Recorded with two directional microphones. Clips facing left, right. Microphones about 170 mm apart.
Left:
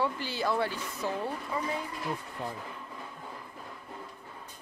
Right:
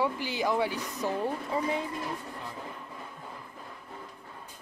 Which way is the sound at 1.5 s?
25° right (ahead or behind).